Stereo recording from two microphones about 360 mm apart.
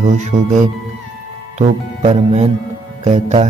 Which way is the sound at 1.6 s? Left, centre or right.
Centre.